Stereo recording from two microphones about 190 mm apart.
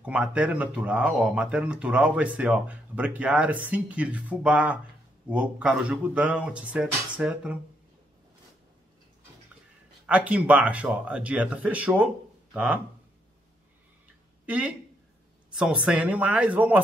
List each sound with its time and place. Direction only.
0.0 s speech: 5° right (ahead or behind)
10.0 s speech: 5° right (ahead or behind)
14.4 s a sound: 10° right (ahead or behind)
15.5 s speech: 5° right (ahead or behind)